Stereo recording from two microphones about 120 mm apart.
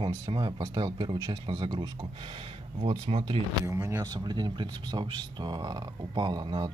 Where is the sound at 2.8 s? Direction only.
50° right (ahead or behind).